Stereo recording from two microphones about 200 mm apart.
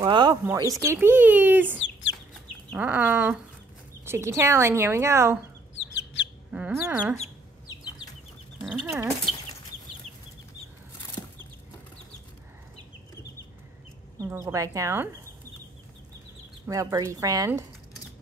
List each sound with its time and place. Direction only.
0.0 s speech: 20° right (ahead or behind)
1.8 s chicken: 65° left (ahead or behind)
2.7 s speech: 10° right (ahead or behind)
5.8 s bird: 65° left (ahead or behind)
6.5 s speech: 10° right (ahead or behind)
8.6 s speech: 5° right (ahead or behind)
14.3 s speech: 15° right (ahead or behind)
16.6 s speech: 15° right (ahead or behind)